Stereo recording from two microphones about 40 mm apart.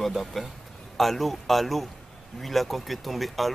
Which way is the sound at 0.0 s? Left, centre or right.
Centre.